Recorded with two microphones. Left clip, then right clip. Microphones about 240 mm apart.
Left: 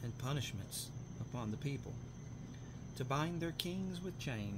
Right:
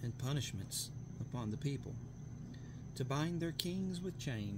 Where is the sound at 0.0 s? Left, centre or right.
Right.